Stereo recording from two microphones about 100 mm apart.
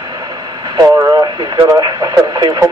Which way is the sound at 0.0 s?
40° right (ahead or behind).